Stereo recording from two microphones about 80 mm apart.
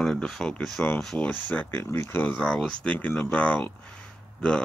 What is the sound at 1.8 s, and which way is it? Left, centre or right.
Speech, left.